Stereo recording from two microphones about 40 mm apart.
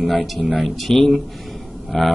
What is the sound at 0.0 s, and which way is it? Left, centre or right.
Speech, centre.